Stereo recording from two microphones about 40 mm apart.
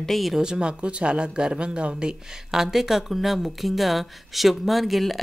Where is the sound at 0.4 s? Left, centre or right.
Right.